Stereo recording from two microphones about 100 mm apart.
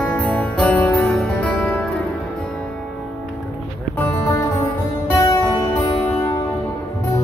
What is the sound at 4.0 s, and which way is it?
Music, 20° left (ahead or behind).